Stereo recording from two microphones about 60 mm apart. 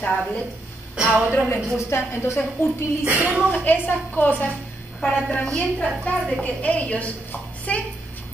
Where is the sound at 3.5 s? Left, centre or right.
Left.